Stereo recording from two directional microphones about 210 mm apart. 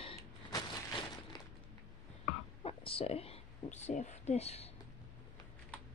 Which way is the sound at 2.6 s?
25° left (ahead or behind).